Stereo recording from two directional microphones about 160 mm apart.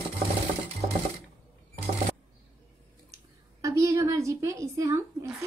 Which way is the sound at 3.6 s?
20° right (ahead or behind).